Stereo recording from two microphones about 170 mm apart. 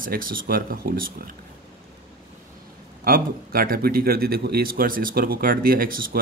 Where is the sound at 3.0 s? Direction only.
60° right (ahead or behind).